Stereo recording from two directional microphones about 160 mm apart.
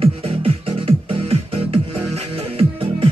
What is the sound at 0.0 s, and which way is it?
Music, 35° right (ahead or behind).